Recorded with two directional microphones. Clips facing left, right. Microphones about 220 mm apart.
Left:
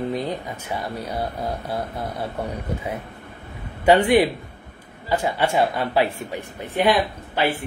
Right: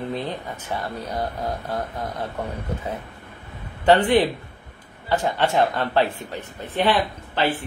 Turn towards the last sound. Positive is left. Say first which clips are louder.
# left 1 dB
turn(degrees=10)  # may be behind; listen again after turning